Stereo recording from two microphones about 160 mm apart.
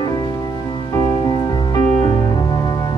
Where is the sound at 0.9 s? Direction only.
25° left (ahead or behind).